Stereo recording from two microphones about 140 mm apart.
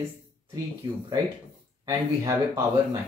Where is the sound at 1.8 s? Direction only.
25° right (ahead or behind).